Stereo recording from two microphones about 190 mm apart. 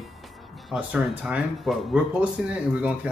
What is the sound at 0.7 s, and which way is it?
Speech, 5° right (ahead or behind).